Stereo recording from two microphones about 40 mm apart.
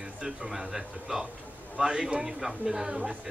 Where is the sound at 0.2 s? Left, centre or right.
Centre.